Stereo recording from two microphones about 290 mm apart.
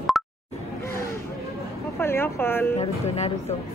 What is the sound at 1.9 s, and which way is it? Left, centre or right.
Speech, centre.